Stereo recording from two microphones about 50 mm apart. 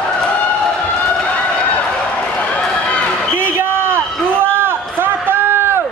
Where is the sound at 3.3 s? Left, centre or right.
Right.